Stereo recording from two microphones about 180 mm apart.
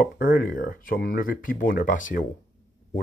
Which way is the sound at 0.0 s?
55° left (ahead or behind).